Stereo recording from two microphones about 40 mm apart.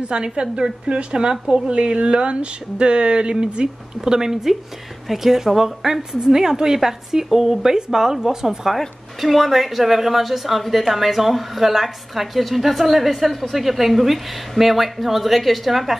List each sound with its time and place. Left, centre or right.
0.1 s a woman's voice: right; by 16.0 s centre